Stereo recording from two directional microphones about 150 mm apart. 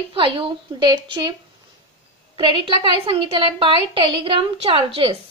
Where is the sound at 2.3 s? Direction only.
35° right (ahead or behind).